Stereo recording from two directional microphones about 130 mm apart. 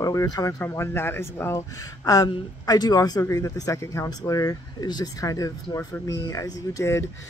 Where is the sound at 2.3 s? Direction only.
30° left (ahead or behind).